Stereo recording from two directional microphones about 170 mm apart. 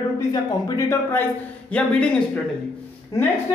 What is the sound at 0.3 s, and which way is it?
Speech, 15° left (ahead or behind).